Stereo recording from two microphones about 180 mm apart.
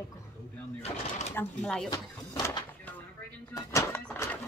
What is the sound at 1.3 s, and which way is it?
Speech, 10° left (ahead or behind).